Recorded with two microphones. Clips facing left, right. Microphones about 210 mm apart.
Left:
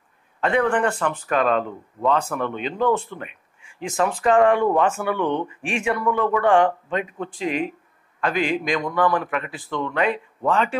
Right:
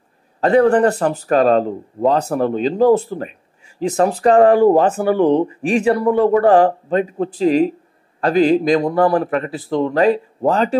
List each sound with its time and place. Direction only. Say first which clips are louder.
0.4 s speech: right 8 dB; 40° right (ahead or behind)